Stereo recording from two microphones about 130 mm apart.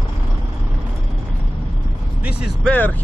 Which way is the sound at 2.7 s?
10° left (ahead or behind).